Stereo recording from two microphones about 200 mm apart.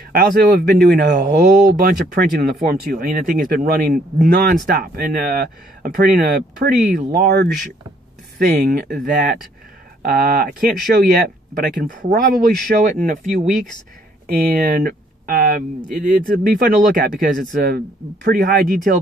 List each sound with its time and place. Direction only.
0.1 s speech: 45° right (ahead or behind)
1.2 s speech: 40° right (ahead or behind)
8.6 s speech: 45° right (ahead or behind)
14.2 s speech: 45° right (ahead or behind)